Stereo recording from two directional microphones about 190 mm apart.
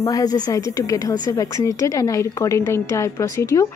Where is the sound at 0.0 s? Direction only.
20° left (ahead or behind).